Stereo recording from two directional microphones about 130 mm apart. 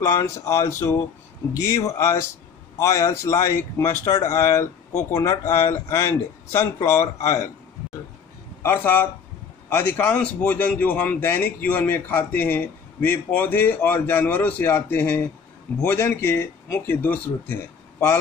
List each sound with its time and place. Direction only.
0.0 s speech: 25° left (ahead or behind)
8.6 s a man's voice: 15° left (ahead or behind)